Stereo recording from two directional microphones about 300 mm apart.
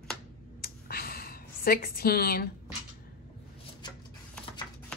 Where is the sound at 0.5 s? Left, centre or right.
Left.